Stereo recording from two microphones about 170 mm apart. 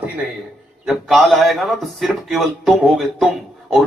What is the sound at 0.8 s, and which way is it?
A man's voice, centre (ahead or behind).